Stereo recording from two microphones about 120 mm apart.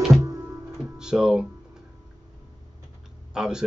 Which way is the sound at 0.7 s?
5° right (ahead or behind).